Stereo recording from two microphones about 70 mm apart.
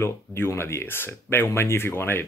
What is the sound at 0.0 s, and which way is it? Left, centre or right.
Speech, left.